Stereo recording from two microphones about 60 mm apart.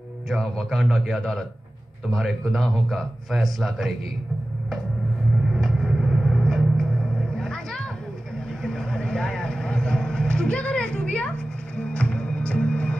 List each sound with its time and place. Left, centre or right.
0.3 s a man's voice: centre
5.5 s a sound: centre
7.3 s vehicle: centre
11.9 s music: left